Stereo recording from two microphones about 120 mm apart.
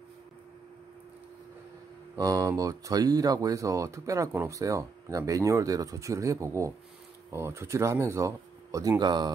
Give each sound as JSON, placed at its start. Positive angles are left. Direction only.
{"t": 2.1, "sound": "speech", "side_deg": -30}